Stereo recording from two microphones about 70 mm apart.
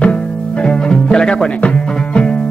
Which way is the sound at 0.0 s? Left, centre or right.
Centre.